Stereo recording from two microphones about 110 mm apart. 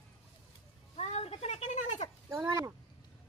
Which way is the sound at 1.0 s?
70° left (ahead or behind).